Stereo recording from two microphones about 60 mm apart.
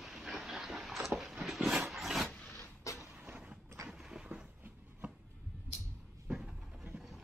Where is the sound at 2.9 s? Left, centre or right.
Left.